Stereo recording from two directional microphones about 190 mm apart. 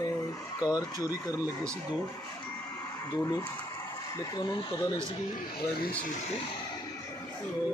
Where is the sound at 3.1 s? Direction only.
20° left (ahead or behind).